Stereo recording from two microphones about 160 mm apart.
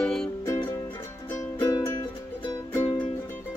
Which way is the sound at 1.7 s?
20° left (ahead or behind).